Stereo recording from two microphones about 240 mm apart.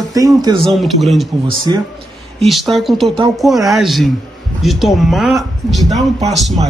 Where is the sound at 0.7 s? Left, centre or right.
Centre.